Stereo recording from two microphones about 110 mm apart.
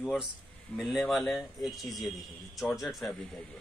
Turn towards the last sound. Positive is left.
turn(degrees=0)  # may be behind; listen again after turning